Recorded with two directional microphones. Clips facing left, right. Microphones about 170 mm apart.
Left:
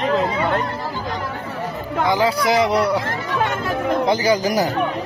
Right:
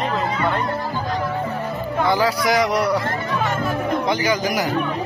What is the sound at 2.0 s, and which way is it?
Speech, 20° left (ahead or behind).